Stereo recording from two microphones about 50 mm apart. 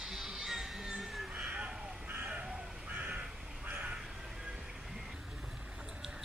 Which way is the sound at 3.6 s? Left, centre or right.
Right.